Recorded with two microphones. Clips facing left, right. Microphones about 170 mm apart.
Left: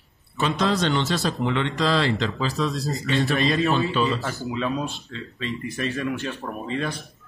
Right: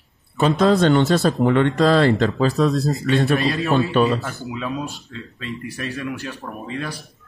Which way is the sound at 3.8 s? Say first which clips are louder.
Right 5 dB; 60° right (ahead or behind).